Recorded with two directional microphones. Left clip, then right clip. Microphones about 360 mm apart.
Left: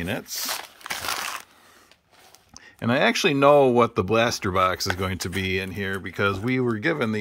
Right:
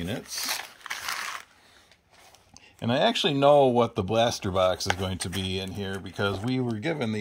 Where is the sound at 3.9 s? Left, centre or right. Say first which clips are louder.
Left 3 dB; centre.